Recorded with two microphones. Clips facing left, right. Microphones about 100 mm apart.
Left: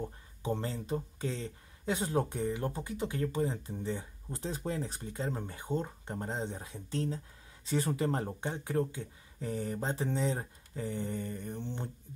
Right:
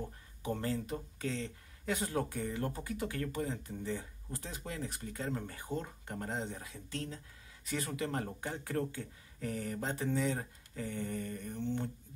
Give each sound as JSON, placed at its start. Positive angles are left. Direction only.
{"t": 0.4, "sound": "speech", "side_deg": 25}
{"t": 8.3, "sound": "speech", "side_deg": 20}